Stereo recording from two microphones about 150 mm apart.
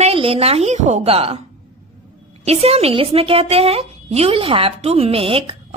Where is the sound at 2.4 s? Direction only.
45° right (ahead or behind).